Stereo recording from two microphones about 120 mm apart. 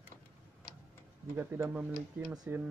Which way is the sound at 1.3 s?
20° right (ahead or behind).